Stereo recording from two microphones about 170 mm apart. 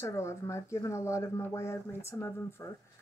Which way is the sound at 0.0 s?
15° left (ahead or behind).